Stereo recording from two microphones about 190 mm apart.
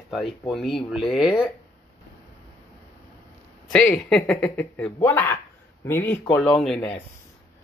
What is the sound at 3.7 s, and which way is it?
Speech, 5° left (ahead or behind).